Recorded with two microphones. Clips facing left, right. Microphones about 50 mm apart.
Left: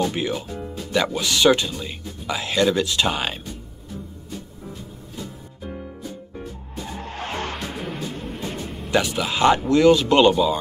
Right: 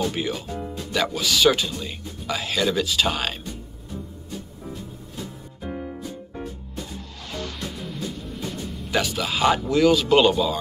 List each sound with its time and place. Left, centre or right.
0.0 s speech: centre
5.6 s music: centre
6.9 s music: left
8.9 s speech: centre